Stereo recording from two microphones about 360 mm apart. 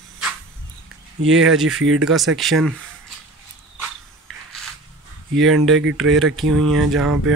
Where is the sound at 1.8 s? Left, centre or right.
Right.